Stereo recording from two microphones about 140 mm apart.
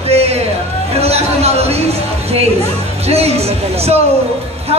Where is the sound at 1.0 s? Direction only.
45° right (ahead or behind).